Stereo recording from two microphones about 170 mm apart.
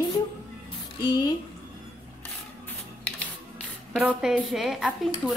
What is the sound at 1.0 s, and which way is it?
Speech, 25° left (ahead or behind).